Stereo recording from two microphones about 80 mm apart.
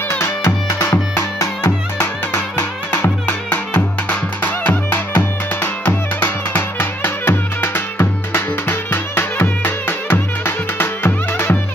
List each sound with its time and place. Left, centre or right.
0.2 s music: left